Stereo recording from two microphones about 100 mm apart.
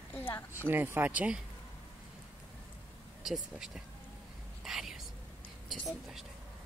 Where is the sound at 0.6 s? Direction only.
20° right (ahead or behind).